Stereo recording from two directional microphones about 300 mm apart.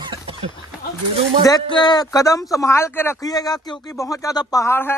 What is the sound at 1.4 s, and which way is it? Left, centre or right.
Speech, centre.